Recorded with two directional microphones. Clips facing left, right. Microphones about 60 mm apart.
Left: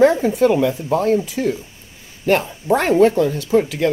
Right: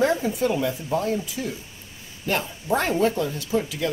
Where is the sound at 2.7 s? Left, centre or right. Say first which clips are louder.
Left 8 dB; left.